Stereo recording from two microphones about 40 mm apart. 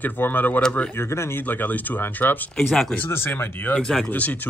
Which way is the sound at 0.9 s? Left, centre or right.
Left.